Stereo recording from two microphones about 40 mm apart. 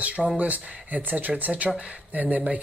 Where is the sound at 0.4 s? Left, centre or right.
Right.